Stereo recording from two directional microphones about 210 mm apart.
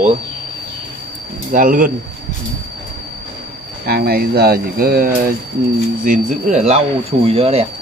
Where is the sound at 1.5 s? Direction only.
40° right (ahead or behind).